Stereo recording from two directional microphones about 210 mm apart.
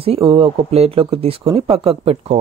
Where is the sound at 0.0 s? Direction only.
25° right (ahead or behind).